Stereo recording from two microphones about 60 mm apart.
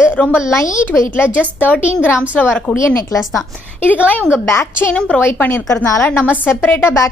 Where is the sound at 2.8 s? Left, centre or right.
Left.